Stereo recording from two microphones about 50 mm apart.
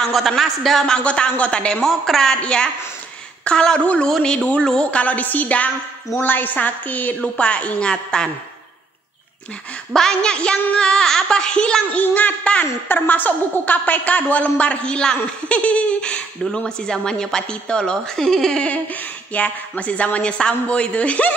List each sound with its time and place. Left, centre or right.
0.0 s a man's voice: centre
0.9 s a woman's voice: left
1.8 s speech: centre
5.0 s a woman's voice: left; by 8.3 s centre
9.9 s speech: centre
12.0 s a woman's voice: left; by 18.6 s centre
19.3 s a woman's voice: left